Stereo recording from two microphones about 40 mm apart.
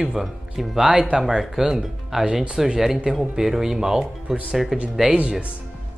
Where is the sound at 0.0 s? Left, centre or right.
Centre.